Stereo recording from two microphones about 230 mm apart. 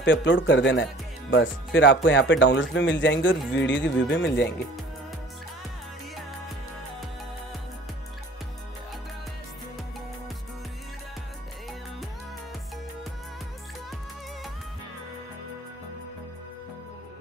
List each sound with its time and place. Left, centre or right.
0.0 s speech: left